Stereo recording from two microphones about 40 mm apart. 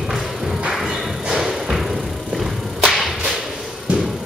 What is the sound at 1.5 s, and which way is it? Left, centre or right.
Whip, centre.